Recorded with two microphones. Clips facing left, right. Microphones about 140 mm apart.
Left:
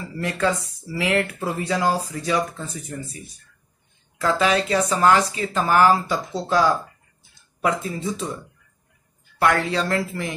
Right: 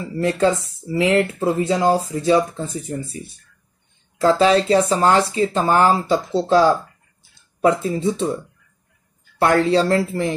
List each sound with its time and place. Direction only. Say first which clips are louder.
0.0 s speech: right 6 dB; 25° right (ahead or behind)
9.4 s speech: right 5 dB; 30° right (ahead or behind)